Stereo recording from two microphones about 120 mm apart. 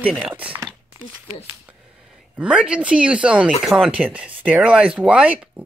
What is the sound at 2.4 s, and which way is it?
Speech, 10° right (ahead or behind).